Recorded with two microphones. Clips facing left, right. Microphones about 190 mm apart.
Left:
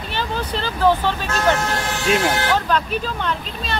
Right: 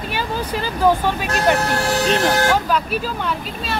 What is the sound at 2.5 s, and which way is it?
Speech, 10° right (ahead or behind).